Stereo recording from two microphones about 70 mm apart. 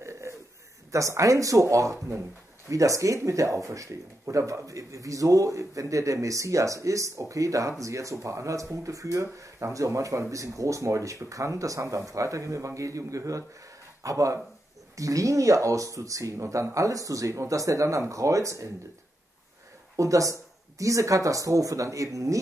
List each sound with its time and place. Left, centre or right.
0.0 s bird: right
0.9 s speech: right
20.0 s speech: right